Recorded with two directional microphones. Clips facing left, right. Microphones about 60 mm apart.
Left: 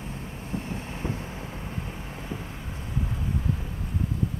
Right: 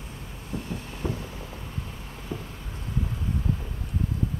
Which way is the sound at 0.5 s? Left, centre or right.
Left.